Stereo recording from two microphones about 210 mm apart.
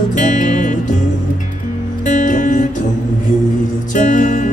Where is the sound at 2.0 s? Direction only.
35° left (ahead or behind).